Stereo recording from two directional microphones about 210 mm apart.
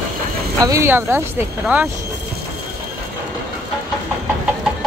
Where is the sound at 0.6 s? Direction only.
15° right (ahead or behind).